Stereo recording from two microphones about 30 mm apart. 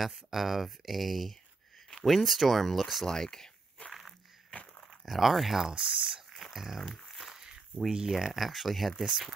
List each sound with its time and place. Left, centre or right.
0.1 s speech: centre
3.1 s a sound: centre
4.5 s dog: left
5.0 s speech: centre
5.8 s speech: centre
6.8 s speech: centre
8.1 s speech: centre